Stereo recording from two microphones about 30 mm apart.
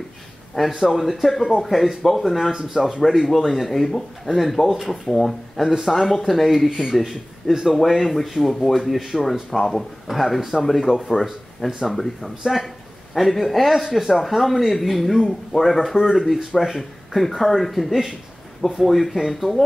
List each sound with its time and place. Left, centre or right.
0.6 s speech: centre
2.8 s speech: right
3.3 s speech: centre